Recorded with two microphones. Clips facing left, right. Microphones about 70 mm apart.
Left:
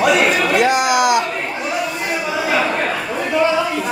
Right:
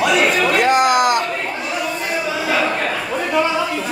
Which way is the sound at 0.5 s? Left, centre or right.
Right.